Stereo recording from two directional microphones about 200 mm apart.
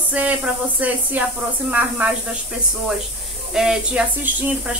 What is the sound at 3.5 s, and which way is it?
Speech, centre (ahead or behind).